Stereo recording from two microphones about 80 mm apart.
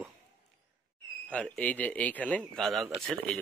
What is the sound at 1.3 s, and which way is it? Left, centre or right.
Speech, centre.